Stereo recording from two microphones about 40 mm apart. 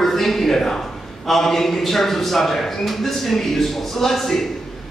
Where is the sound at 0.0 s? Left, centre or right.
Centre.